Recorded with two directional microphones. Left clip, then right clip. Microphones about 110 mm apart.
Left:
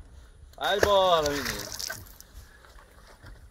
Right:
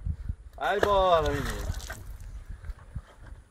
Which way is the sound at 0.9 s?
5° right (ahead or behind).